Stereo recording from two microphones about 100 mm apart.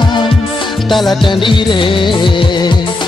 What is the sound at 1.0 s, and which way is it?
Music of bollywood, 50° left (ahead or behind).